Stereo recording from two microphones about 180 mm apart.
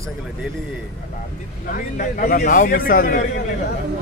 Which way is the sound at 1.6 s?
50° left (ahead or behind).